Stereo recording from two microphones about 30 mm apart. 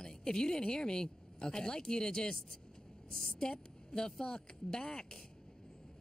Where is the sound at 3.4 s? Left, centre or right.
Left.